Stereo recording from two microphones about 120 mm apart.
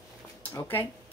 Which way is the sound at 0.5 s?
15° left (ahead or behind).